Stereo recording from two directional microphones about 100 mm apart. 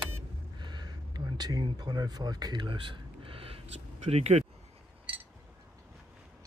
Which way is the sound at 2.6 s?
55° right (ahead or behind).